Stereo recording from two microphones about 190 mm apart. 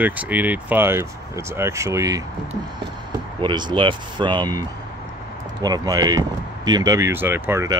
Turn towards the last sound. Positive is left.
turn(degrees=-15)  # may be behind; listen again after turning